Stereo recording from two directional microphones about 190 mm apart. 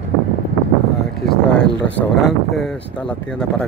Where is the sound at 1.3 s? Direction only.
5° left (ahead or behind).